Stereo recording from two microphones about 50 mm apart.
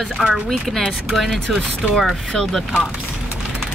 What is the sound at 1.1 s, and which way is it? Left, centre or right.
Speech, centre.